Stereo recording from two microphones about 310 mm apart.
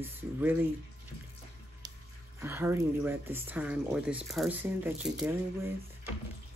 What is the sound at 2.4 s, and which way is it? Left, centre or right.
Speech, centre.